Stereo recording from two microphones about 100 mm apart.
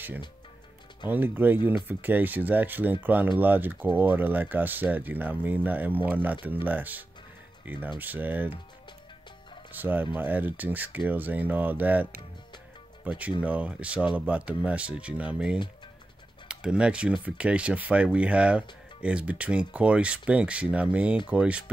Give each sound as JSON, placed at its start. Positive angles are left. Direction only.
{"t": 1.0, "sound": "speech", "side_deg": -20}
{"t": 9.7, "sound": "speech", "side_deg": -20}